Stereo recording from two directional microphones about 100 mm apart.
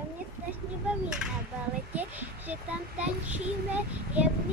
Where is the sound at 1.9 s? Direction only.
15° right (ahead or behind).